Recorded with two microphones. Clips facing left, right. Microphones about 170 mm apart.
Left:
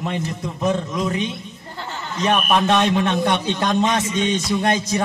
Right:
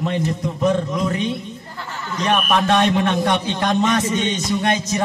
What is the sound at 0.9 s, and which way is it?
A man's voice, 20° left (ahead or behind).